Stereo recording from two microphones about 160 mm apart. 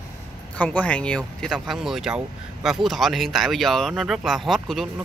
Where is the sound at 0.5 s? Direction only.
10° left (ahead or behind).